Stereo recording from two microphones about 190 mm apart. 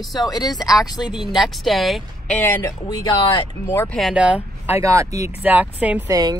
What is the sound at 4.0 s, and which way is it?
Speech, 5° right (ahead or behind).